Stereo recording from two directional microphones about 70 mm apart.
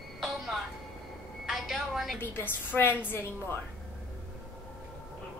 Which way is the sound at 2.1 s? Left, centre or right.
Left.